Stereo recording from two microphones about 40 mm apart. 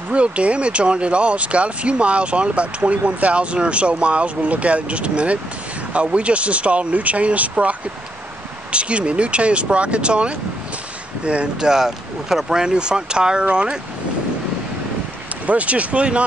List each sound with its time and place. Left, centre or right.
0.1 s speech: right
8.7 s speech: right
11.7 s speech: centre; by 13.7 s right
15.4 s speech: right